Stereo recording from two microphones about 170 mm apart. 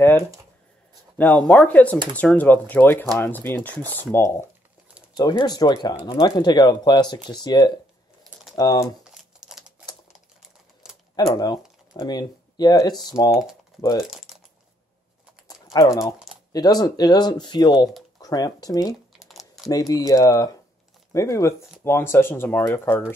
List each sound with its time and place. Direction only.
1.1 s speech: 10° left (ahead or behind)
9.0 s crumpling: 5° right (ahead or behind)
11.1 s speech: 25° left (ahead or behind)
13.9 s speech: 5° right (ahead or behind)
15.4 s typing: 20° left (ahead or behind)
16.5 s speech: 20° left (ahead or behind)
19.1 s crumpling: centre (ahead or behind)
19.7 s speech: 20° left (ahead or behind)